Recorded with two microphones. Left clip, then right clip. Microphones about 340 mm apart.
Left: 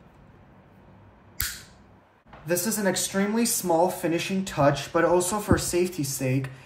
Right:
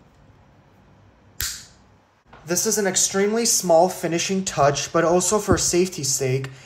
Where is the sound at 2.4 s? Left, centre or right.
Right.